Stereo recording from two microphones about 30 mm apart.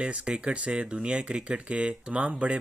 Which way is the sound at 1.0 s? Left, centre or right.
Right.